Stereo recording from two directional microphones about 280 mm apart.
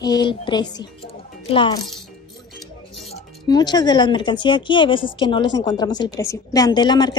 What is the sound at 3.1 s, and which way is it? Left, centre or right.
A woman's voice, centre.